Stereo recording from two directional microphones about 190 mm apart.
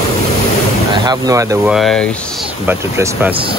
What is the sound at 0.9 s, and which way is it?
Speech, 20° right (ahead or behind).